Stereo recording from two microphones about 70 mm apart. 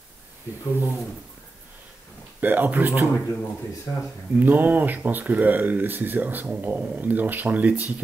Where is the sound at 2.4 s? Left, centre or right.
Right.